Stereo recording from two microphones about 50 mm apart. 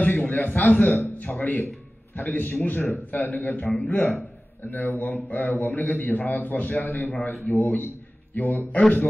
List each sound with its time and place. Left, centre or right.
0.0 s a man's voice: left
8.4 s a man's voice: left
8.7 s a man's voice: left